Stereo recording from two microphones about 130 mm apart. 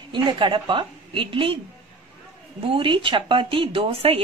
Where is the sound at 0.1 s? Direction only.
40° right (ahead or behind).